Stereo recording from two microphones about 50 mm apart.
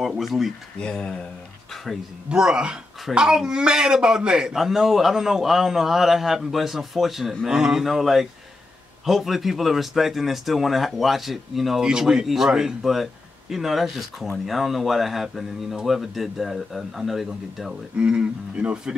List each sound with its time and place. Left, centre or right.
0.0 s speech: centre
0.7 s speech: centre
2.2 s speech: centre
17.9 s speech: right